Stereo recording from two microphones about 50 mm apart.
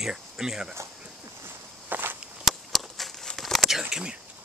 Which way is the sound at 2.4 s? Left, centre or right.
Centre.